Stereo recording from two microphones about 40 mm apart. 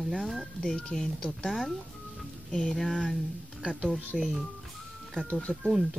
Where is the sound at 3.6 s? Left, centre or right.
Centre.